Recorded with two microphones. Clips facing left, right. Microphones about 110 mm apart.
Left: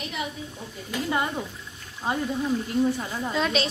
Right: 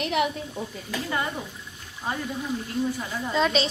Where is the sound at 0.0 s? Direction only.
65° right (ahead or behind).